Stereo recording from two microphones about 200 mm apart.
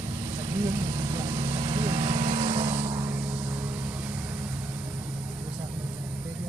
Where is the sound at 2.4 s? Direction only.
20° right (ahead or behind).